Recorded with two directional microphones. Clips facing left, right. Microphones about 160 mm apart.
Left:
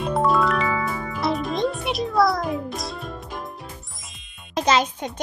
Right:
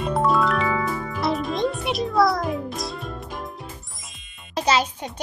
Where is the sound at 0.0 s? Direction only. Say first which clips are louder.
Even; centre (ahead or behind).